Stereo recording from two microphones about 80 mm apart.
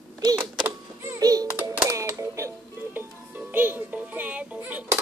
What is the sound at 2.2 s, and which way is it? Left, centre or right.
Music, right.